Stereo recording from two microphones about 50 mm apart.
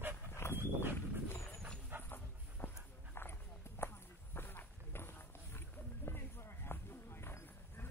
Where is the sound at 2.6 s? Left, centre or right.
Left.